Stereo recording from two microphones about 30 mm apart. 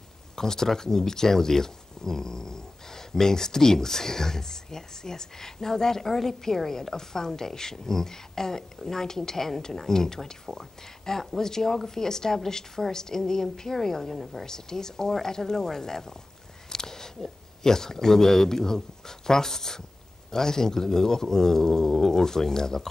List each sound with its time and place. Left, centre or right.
0.4 s a woman's voice: centre
14.4 s speech: centre